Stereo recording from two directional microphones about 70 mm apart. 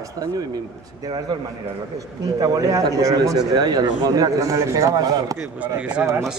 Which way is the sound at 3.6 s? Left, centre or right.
Right.